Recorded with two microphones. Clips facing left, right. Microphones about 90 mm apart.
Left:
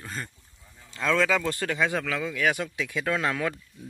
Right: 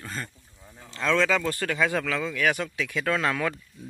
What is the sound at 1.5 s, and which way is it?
Speech, 15° left (ahead or behind).